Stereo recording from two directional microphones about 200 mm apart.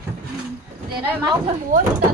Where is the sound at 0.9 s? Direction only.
20° right (ahead or behind).